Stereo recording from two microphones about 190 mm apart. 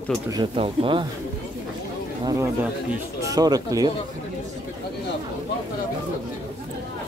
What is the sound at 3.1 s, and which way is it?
Speech, 20° right (ahead or behind).